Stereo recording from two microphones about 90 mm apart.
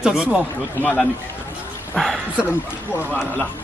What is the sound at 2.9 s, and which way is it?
Speech, 20° left (ahead or behind).